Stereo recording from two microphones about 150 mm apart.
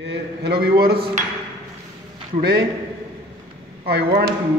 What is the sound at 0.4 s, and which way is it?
Speech, 90° right.